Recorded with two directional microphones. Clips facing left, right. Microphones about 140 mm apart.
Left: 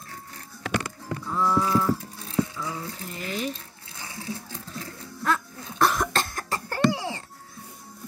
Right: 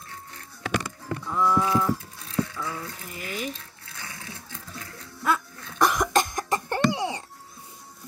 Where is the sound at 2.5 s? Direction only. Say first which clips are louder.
Even; 20° left (ahead or behind); by 3.6 s 40° left (ahead or behind).